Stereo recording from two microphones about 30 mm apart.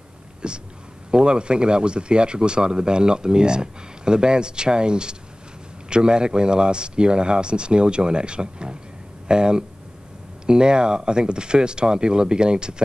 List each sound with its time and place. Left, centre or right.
0.4 s speech: right